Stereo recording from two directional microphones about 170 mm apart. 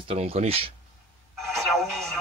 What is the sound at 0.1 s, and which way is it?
Speech, 35° right (ahead or behind).